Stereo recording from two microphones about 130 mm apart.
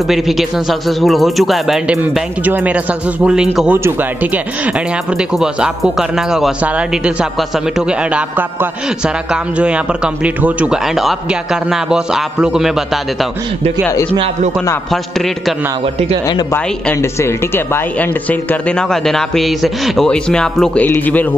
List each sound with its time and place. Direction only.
0.0 s speech: centre (ahead or behind)
2.4 s speech: 10° right (ahead or behind)
14.9 s speech: centre (ahead or behind)
15.8 s speech: 45° right (ahead or behind)
16.5 s speech: 15° left (ahead or behind)